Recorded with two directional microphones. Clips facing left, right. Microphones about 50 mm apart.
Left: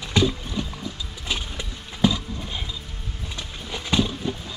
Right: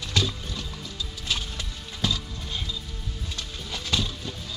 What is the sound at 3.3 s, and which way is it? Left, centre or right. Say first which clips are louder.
Horse: left 3 dB; left.